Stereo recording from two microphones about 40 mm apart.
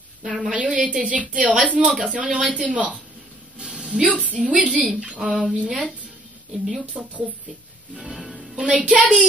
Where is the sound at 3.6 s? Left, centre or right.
Centre.